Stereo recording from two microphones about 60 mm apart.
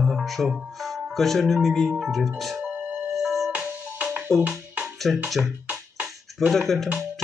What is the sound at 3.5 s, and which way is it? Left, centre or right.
Music, right.